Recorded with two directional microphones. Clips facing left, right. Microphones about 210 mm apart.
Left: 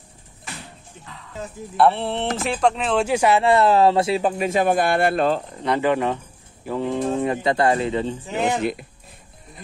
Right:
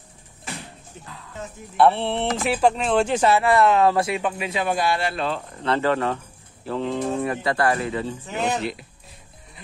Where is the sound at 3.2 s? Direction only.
15° left (ahead or behind).